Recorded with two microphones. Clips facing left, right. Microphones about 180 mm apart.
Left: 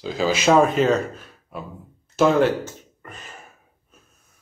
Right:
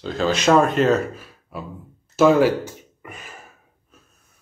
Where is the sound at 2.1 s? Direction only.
5° right (ahead or behind).